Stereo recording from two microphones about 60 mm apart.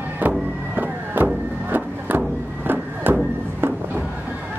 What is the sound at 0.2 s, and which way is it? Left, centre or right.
Music, right.